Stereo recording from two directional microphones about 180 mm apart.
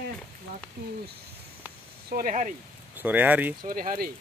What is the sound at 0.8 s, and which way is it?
Speech, 55° right (ahead or behind).